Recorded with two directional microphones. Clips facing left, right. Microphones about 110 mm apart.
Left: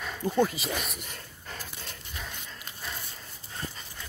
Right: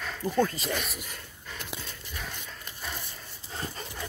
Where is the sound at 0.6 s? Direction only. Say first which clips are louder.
Right 1 dB; centre (ahead or behind).